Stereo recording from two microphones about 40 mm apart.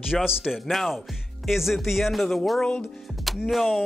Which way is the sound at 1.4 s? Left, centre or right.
Centre.